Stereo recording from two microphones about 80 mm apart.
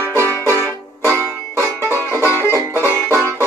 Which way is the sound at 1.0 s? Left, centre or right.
Right.